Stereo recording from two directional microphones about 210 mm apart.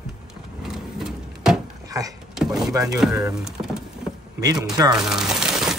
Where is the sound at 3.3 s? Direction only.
5° right (ahead or behind).